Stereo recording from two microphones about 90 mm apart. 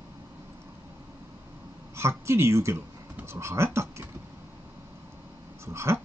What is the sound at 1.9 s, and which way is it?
Speech, 30° right (ahead or behind).